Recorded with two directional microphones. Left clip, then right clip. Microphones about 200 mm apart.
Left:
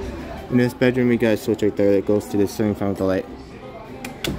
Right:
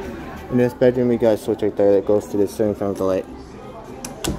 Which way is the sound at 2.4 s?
55° left (ahead or behind).